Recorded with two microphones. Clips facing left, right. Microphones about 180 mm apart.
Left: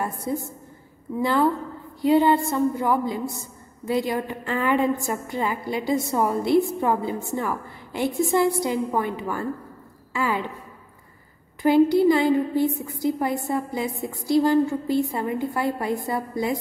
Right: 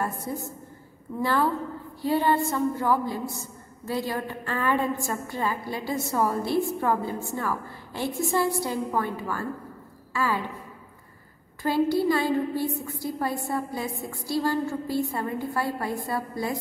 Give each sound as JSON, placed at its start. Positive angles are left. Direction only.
{"t": 0.0, "sound": "a sound", "side_deg": 15}
{"t": 1.1, "sound": "a woman's voice", "side_deg": 15}
{"t": 11.6, "sound": "a woman's voice", "side_deg": 20}